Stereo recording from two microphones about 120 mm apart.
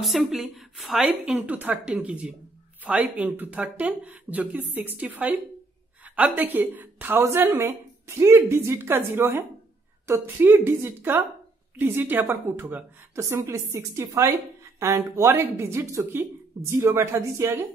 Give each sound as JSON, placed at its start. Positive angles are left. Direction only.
{"t": 0.0, "sound": "a woman's voice", "side_deg": 0}